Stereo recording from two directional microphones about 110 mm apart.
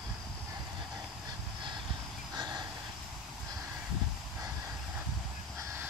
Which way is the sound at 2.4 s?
40° right (ahead or behind).